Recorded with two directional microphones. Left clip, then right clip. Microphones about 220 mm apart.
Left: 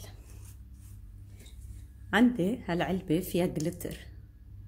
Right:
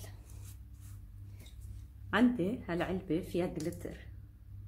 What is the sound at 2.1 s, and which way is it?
A woman's voice, 40° left (ahead or behind).